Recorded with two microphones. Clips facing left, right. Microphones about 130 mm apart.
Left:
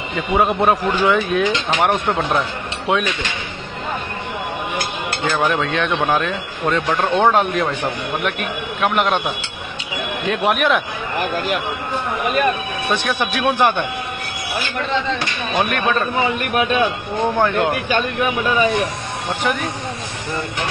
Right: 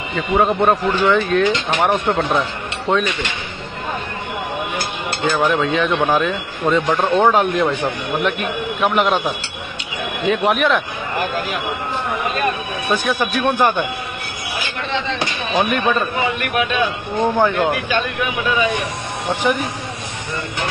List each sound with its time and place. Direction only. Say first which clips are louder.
0.3 s speech: right 1 dB; 5° left (ahead or behind)
5.2 s speech: right 2 dB; centre (ahead or behind)
12.8 s speech: right 2 dB; centre (ahead or behind)
15.5 s speech: right 1 dB; centre (ahead or behind)
17.2 s speech: right 1 dB; centre (ahead or behind)
17.8 s speech: left 2 dB; 45° left (ahead or behind)
19.4 s speech: right 3 dB; 5° right (ahead or behind)